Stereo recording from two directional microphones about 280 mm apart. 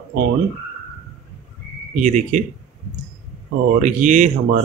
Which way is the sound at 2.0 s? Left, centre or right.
Right.